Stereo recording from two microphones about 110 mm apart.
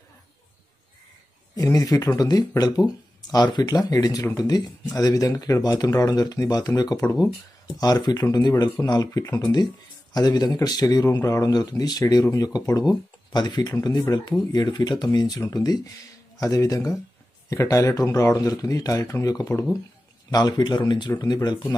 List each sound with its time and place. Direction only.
1.5 s speech: 35° left (ahead or behind)